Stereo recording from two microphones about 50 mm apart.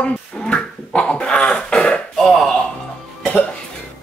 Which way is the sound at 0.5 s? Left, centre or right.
Left.